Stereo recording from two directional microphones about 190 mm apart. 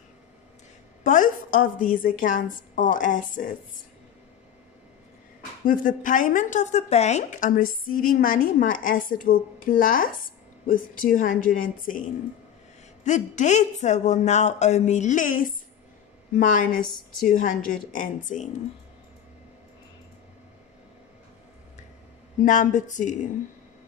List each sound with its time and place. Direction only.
1.0 s a woman's voice: 45° left (ahead or behind)
5.7 s a woman's voice: 45° left (ahead or behind)
13.0 s a woman's voice: 40° left (ahead or behind)
22.4 s speech: 40° left (ahead or behind)